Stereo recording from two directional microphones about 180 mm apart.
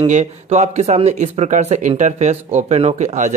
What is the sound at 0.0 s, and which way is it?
Speech, 40° right (ahead or behind).